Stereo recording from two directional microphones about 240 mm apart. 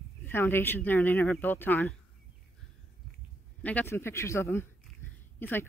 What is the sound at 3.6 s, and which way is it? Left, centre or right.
Speech, centre.